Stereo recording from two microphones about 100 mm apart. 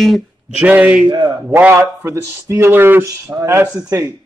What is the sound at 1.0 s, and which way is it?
Speech, 50° right (ahead or behind).